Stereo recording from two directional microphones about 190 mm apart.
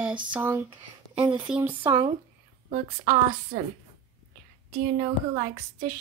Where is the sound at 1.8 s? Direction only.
25° right (ahead or behind).